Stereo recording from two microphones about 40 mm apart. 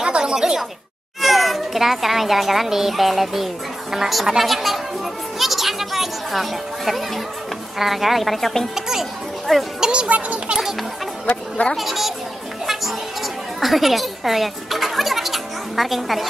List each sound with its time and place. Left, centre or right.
0.0 s a sound: centre
1.2 s speech: centre
5.4 s music: centre
7.8 s speech: centre
8.7 s a child's voice: centre
9.8 s speech: right
10.0 s speech: right
11.2 s speech: left
11.7 s speech: centre
13.6 s music: centre